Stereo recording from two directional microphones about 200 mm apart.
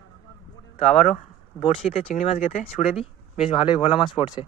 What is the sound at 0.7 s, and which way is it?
Speech, 35° left (ahead or behind).